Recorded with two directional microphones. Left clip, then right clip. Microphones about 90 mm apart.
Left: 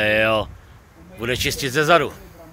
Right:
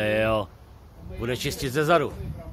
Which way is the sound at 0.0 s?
20° left (ahead or behind).